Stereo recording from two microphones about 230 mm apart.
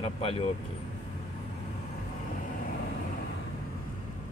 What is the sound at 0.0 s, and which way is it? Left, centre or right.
Speech, left.